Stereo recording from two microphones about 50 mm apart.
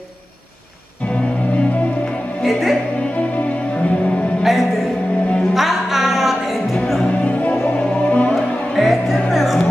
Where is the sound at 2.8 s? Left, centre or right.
Left.